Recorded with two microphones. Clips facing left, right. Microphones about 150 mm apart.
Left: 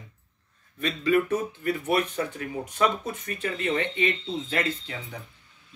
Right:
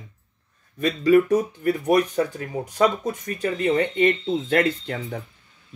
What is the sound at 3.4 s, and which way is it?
Speech, 35° right (ahead or behind).